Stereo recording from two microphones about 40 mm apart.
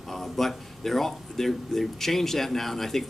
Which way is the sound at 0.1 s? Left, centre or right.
Centre.